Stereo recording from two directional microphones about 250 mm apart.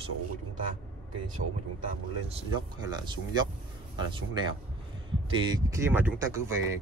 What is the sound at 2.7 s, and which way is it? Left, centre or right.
Speech, centre.